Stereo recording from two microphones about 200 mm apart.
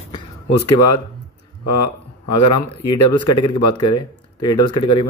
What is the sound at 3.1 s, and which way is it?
Speech, 25° left (ahead or behind).